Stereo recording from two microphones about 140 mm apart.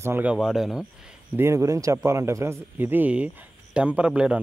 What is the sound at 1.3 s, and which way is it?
Speech, 20° right (ahead or behind).